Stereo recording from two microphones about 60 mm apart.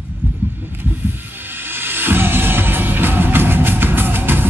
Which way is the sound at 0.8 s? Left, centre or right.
Right.